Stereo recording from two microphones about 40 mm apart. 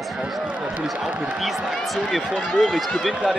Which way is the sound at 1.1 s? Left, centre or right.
Right.